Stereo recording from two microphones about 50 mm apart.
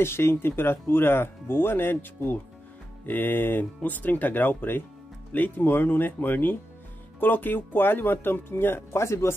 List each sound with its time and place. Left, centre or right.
0.0 s speech: left